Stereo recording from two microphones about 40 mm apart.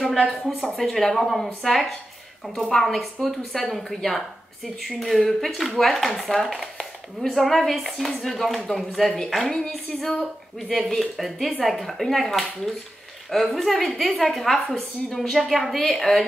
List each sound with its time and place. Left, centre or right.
0.0 s speech: centre
0.6 s a woman's voice: centre
11.0 s a woman's voice: centre